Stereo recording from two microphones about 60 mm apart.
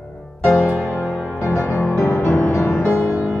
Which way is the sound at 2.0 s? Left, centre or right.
Left.